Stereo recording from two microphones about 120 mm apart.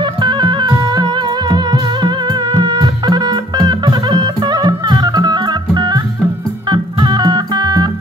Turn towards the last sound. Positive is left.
turn(degrees=-35)  # may be behind; listen again after turning